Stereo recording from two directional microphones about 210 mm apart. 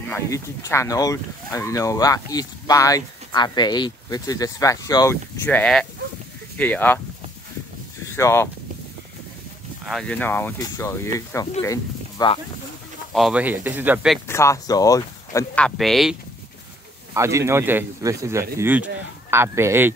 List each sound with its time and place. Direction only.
0.1 s speech: 10° left (ahead or behind)
8.2 s speech: 10° left (ahead or behind)
9.8 s speech: 5° left (ahead or behind)
13.1 s speech: 5° right (ahead or behind)
14.2 s speech: 15° left (ahead or behind)
17.1 s speech: 15° right (ahead or behind)